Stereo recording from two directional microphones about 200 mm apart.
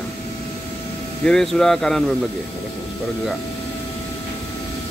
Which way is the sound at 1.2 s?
5° left (ahead or behind).